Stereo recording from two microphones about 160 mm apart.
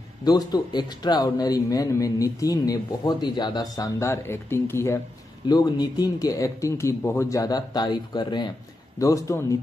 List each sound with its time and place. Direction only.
0.2 s speech: 25° left (ahead or behind)